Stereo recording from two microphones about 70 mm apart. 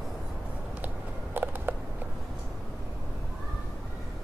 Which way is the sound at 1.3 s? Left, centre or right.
Right.